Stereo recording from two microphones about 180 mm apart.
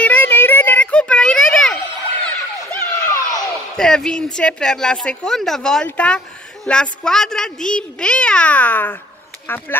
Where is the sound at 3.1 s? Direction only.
20° left (ahead or behind).